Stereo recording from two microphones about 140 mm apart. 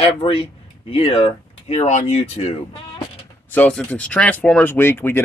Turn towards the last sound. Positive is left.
turn(degrees=15)  # may be behind; listen again after turning